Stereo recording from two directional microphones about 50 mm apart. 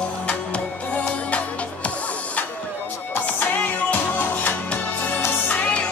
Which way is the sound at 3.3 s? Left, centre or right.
Left.